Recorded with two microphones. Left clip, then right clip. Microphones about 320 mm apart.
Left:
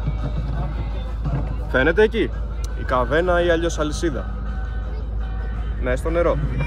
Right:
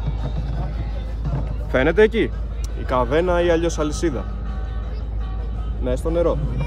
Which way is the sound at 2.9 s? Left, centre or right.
Centre.